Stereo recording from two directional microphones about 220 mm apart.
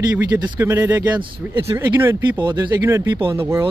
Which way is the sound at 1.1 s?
20° right (ahead or behind).